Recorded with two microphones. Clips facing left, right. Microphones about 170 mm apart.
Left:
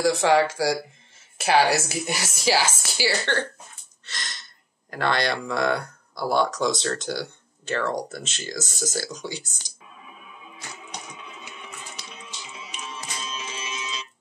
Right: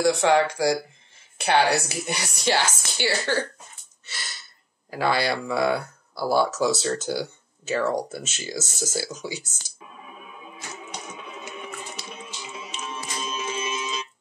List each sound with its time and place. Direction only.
0.0 s a woman's voice: centre (ahead or behind)
3.3 s speech: 5° right (ahead or behind)
4.0 s a sound: 10° right (ahead or behind)
4.9 s speech: 5° right (ahead or behind)
9.6 s music: 10° right (ahead or behind)
11.4 s music: 50° right (ahead or behind)